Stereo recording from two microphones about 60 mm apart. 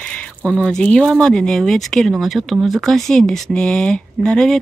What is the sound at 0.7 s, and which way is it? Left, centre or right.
Speech, centre.